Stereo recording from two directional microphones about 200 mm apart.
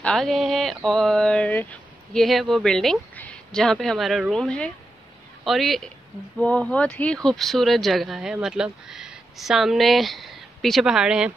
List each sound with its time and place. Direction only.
0.0 s a man's voice: centre (ahead or behind)